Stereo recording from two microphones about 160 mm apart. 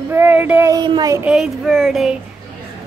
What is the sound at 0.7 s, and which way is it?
Speech, 25° right (ahead or behind).